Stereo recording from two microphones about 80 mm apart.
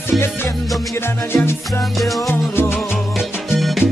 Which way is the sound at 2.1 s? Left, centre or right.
Left.